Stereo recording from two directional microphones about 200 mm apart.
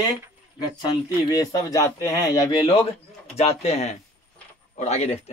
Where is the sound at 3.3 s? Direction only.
30° left (ahead or behind).